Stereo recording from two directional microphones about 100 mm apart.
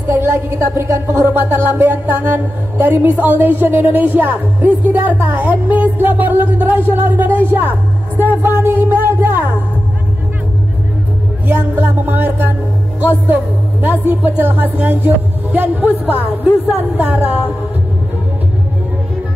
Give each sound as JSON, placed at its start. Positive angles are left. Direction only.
{"t": 0.1, "sound": "music", "side_deg": -25}
{"t": 11.4, "sound": "music", "side_deg": -20}
{"t": 13.3, "sound": "speech", "side_deg": -20}